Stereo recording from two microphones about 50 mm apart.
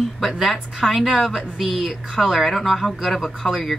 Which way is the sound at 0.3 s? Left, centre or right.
Centre.